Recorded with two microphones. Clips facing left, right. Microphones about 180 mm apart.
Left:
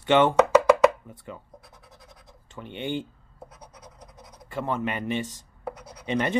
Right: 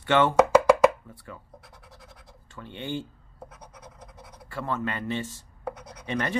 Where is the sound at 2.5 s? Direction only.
20° left (ahead or behind).